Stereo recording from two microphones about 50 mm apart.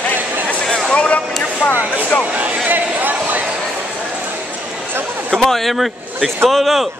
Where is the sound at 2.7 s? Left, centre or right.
Right.